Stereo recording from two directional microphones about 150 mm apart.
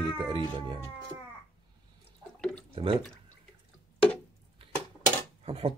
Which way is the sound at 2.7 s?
40° right (ahead or behind).